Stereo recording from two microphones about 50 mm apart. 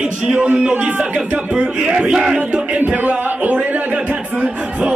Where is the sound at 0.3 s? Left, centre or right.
Right.